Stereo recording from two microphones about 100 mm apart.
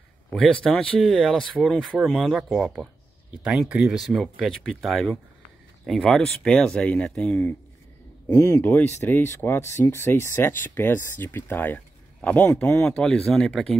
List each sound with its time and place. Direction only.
0.3 s speech: 10° left (ahead or behind)
8.3 s speech: 25° left (ahead or behind); by 13.7 s 5° left (ahead or behind)